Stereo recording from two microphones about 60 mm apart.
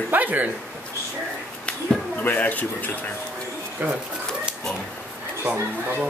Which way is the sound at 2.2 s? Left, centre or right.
Left.